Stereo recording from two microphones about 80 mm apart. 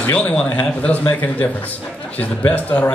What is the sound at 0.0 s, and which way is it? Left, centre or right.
Speech, centre.